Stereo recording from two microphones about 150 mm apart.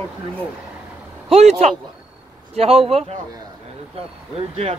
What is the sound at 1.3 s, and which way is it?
A woman's voice, 45° right (ahead or behind).